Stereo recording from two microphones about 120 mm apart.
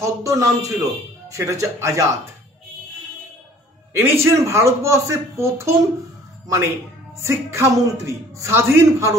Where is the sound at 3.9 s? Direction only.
20° right (ahead or behind).